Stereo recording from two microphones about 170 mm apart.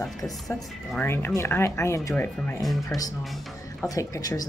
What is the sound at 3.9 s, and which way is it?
Speech, 20° left (ahead or behind).